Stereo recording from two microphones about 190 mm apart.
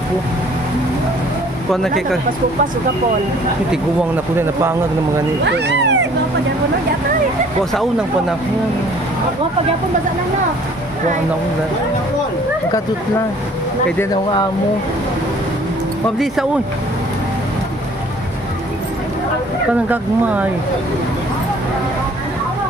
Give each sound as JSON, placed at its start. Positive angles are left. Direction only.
{"t": 1.7, "sound": "speech", "side_deg": 0}
{"t": 5.4, "sound": "speech", "side_deg": -65}